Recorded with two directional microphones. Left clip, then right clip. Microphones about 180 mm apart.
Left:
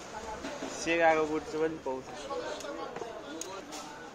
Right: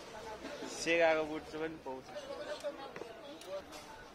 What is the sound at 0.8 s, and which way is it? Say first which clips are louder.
Speech: left 3 dB; 25° right (ahead or behind).